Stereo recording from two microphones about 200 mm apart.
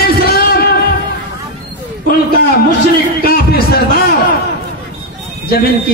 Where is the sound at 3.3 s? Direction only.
50° left (ahead or behind).